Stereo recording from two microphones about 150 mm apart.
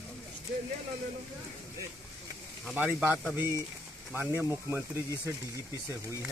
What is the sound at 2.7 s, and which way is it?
Speech, 10° right (ahead or behind).